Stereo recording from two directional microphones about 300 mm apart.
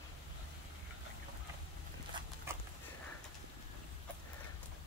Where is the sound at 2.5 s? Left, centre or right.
Centre.